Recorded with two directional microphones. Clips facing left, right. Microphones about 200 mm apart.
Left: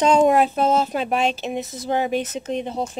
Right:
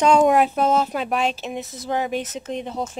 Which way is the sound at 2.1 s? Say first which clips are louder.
Left 3 dB; centre (ahead or behind).